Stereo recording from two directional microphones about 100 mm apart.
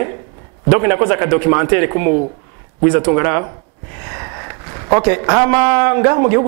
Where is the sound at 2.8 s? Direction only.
25° right (ahead or behind).